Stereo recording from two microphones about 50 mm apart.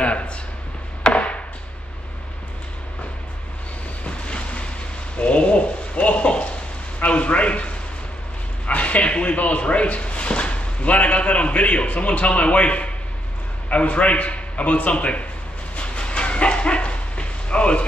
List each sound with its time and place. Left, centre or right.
0.0 s a sound: left
1.1 s chop: left
4.0 s waves: left
5.2 s a sound: left
13.7 s a man's voice: left
15.7 s dog: left